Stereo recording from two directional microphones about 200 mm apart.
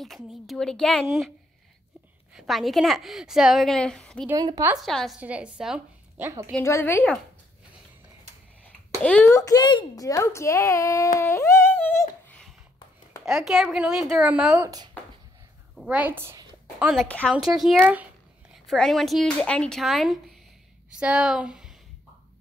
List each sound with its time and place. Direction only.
0.0 s a woman's voice: centre (ahead or behind)
2.3 s a woman's voice: centre (ahead or behind)
4.4 s a woman's voice: 20° right (ahead or behind)
4.6 s a woman's voice: centre (ahead or behind)
6.5 s a woman's voice: 10° left (ahead or behind)
9.0 s a woman's voice: 5° left (ahead or behind)
11.1 s humming: 15° left (ahead or behind)
13.2 s a woman's voice: centre (ahead or behind)
15.7 s a woman's voice: 5° right (ahead or behind)
16.9 s a woman's voice: 5° left (ahead or behind)